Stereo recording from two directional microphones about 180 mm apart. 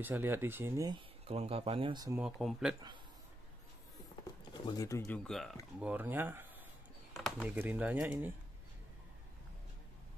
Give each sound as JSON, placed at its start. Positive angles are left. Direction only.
{"t": 0.0, "sound": "speech", "side_deg": -10}
{"t": 1.2, "sound": "speech", "side_deg": -35}
{"t": 2.4, "sound": "speech", "side_deg": -5}
{"t": 4.6, "sound": "speech", "side_deg": 20}
{"t": 5.8, "sound": "speech", "side_deg": -10}